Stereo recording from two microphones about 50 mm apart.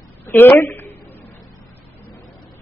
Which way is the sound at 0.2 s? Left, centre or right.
Left.